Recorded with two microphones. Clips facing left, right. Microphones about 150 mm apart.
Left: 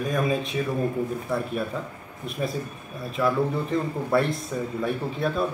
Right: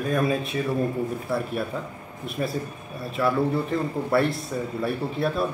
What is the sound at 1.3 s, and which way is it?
A man's voice, 5° right (ahead or behind).